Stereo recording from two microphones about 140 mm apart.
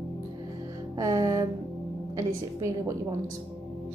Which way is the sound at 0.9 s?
25° right (ahead or behind).